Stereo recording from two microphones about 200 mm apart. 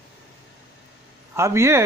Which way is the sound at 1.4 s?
15° right (ahead or behind).